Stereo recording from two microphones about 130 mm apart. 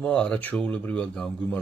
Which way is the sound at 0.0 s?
5° left (ahead or behind).